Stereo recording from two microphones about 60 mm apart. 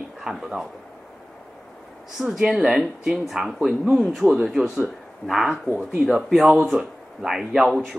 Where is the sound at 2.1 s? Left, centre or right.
Centre.